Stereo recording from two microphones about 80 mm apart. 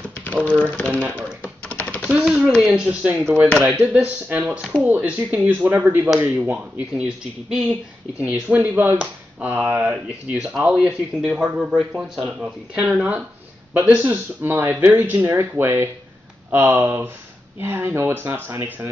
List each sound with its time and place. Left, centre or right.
0.2 s speech: centre
1.0 s speech: right
2.0 s speech: centre
2.6 s speech: centre